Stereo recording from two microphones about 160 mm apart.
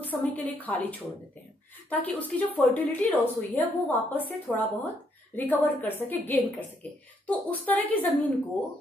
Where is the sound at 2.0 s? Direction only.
10° left (ahead or behind).